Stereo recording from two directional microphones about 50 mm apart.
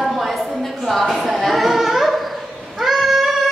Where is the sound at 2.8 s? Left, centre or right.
Centre.